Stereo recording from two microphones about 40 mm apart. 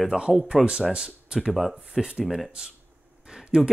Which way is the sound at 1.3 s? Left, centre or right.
Centre.